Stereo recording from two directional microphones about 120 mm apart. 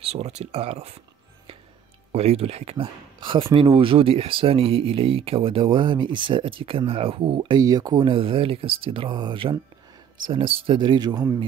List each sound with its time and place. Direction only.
0.0 s speech: 60° right (ahead or behind)
2.1 s speech: 60° right (ahead or behind)
2.8 s speech: 45° right (ahead or behind)